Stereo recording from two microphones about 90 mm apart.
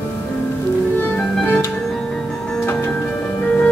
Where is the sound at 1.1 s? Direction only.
10° left (ahead or behind).